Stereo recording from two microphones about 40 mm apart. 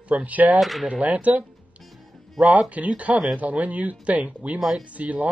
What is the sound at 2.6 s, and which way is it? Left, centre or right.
Speech, right.